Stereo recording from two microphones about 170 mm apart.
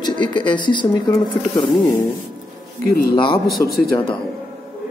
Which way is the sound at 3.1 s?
30° left (ahead or behind).